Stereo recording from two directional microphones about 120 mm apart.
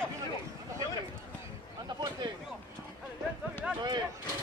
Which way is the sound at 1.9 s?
35° right (ahead or behind).